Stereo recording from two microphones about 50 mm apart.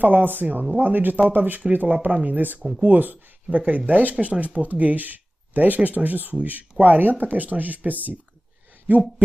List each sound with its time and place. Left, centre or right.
0.0 s speech: right